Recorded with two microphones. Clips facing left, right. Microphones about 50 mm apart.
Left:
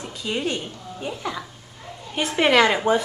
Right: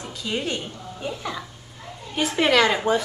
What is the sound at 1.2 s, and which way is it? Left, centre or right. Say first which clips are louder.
Speech: left 2 dB; centre.